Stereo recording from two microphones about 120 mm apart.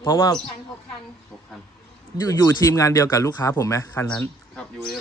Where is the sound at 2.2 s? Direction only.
30° left (ahead or behind).